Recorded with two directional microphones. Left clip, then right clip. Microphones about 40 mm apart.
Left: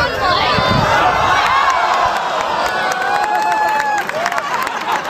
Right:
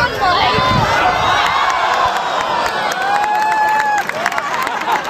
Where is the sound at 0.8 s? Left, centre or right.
Left.